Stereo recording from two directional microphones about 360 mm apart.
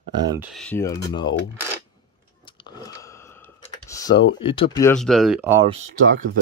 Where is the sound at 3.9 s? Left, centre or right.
Centre.